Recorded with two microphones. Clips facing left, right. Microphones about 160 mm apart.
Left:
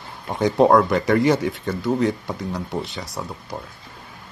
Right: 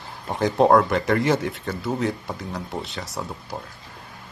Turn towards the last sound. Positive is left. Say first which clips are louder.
# left 1 dB
turn(degrees=0)  # may be behind; listen again after turning